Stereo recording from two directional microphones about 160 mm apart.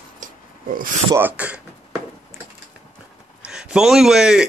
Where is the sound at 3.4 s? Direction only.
5° right (ahead or behind).